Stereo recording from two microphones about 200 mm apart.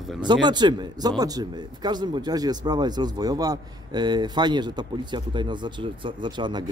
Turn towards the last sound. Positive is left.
turn(degrees=-20)  # may be behind; listen again after turning